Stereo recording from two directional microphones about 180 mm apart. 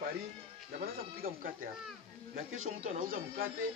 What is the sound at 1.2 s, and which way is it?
Speech, 50° right (ahead or behind).